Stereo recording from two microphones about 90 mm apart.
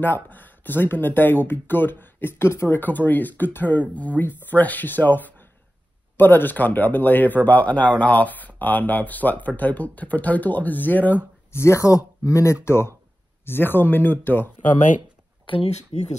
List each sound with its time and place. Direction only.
0.0 s speech: 20° left (ahead or behind)
11.5 s speech: 30° left (ahead or behind)
15.4 s speech: 75° left (ahead or behind)